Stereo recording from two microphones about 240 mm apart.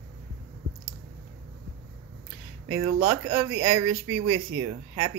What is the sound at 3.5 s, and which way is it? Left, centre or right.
Speech, right.